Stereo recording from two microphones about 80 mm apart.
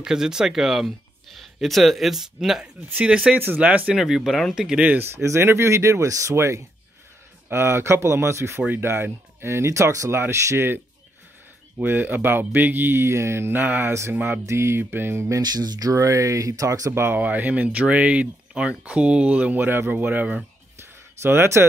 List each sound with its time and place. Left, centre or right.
0.0 s speech: centre
3.3 s speech: right
3.9 s speech: centre
4.6 s speech: centre
4.9 s speech: right
11.8 s speech: right
14.4 s speech: right
15.4 s speech: right
15.9 s speech: right
17.0 s speech: right
21.2 s speech: right